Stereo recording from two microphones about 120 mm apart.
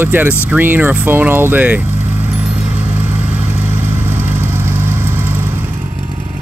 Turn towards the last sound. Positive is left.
turn(degrees=-15)  # may be behind; listen again after turning